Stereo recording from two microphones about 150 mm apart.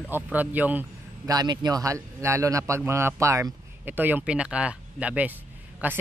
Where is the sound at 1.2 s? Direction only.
25° right (ahead or behind).